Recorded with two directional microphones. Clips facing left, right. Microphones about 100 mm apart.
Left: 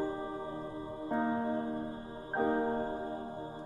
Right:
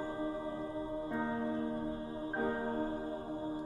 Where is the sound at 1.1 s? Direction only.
40° left (ahead or behind).